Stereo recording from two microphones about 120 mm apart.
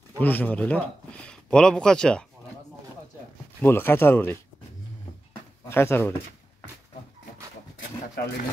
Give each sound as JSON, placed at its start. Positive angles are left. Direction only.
{"t": 0.2, "sound": "speech", "side_deg": 15}
{"t": 3.6, "sound": "speech", "side_deg": 20}
{"t": 5.7, "sound": "speech", "side_deg": 20}